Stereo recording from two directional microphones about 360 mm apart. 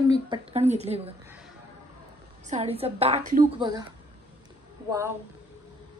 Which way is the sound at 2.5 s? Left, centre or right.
Centre.